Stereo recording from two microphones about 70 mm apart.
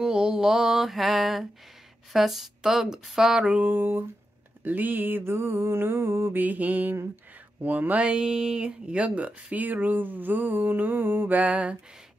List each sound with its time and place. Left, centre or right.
0.0 s mantra: centre
2.1 s speech: centre
3.6 s speech: right
4.6 s mantra: right
6.4 s speech: right